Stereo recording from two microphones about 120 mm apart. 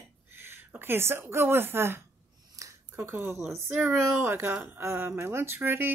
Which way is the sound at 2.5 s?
30° right (ahead or behind).